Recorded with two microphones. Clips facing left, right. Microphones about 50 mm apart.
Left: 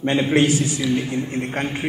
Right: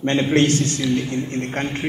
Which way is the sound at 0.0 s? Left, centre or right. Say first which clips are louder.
Even; centre.